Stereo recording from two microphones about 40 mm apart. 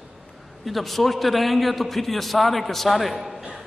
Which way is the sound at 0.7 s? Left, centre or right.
Centre.